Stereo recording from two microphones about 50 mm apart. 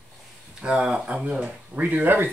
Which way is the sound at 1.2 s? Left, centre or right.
Right.